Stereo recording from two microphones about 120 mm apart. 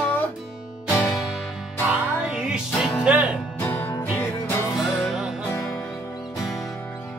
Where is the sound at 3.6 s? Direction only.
15° left (ahead or behind).